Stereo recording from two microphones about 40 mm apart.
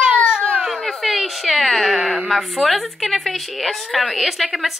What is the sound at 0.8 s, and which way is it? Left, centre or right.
A woman's voice, centre.